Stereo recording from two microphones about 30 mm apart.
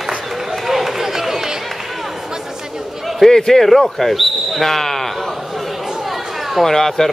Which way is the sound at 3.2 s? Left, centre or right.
Centre.